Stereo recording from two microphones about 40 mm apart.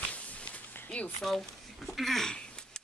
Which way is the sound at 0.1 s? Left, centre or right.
Left.